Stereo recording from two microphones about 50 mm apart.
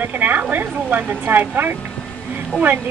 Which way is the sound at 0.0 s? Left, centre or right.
Right.